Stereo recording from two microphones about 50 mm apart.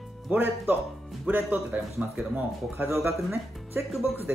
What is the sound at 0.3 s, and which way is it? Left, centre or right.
Speech, right.